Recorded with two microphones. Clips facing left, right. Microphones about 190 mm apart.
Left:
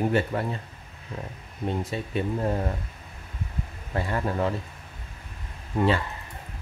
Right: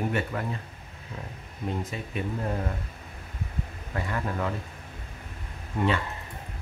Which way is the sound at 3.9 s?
30° left (ahead or behind).